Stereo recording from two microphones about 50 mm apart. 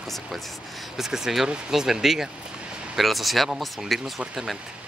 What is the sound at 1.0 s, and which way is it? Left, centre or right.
Speech, centre.